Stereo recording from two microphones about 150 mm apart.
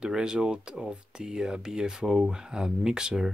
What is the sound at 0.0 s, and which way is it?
Speech, 5° right (ahead or behind).